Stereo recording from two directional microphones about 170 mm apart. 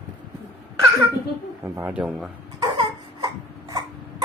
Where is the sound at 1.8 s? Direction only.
10° right (ahead or behind).